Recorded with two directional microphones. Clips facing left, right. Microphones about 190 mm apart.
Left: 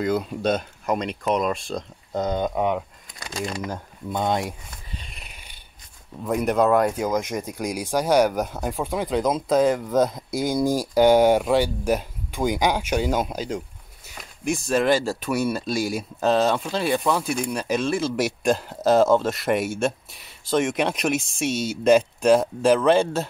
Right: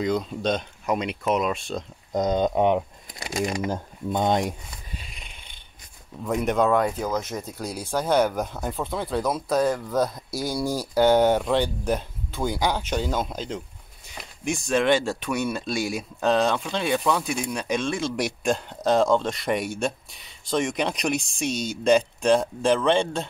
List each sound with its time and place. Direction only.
0.0 s speech: 5° left (ahead or behind)
2.1 s speech: 15° right (ahead or behind)
4.6 s a sound: centre (ahead or behind)
6.2 s speech: centre (ahead or behind)